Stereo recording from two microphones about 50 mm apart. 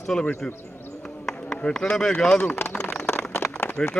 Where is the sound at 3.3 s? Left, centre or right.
Left.